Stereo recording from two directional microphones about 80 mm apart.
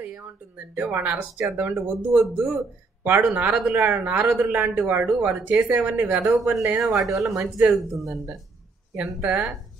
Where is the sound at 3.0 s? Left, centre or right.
Right.